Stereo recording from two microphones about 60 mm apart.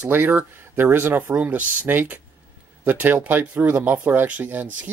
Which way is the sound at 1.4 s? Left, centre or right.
Right.